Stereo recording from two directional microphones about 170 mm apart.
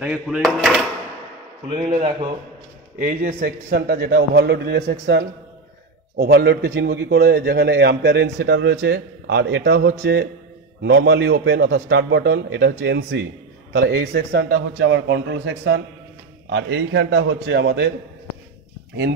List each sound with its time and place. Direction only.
0.0 s speech: 5° right (ahead or behind)
3.0 s a man's voice: 55° right (ahead or behind); by 4.9 s 75° right (ahead or behind)
5.0 s a man's voice: 90° right
6.1 s a man's voice: 70° right (ahead or behind); by 13.2 s 90° right
13.7 s a man's voice: 75° right (ahead or behind)